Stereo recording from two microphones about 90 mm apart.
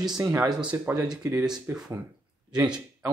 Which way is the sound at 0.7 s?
35° right (ahead or behind).